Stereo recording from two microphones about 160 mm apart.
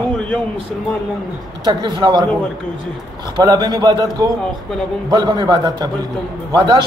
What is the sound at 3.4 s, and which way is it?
A man's voice, 25° right (ahead or behind).